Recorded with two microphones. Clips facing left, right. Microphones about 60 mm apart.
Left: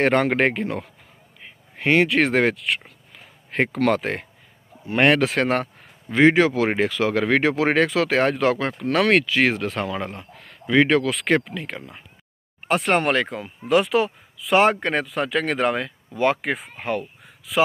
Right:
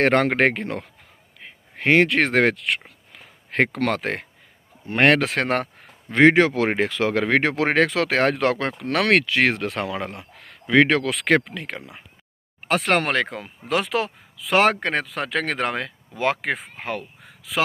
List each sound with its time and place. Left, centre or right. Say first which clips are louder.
0.0 s speech: right 1 dB; right
3.1 s a sound: right 1 dB; right
4.8 s speech: even; right
16.5 s speech: even; centre